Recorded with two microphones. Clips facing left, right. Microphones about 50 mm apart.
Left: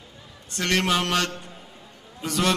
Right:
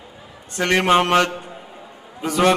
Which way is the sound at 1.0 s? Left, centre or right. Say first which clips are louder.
Right 8 dB; centre.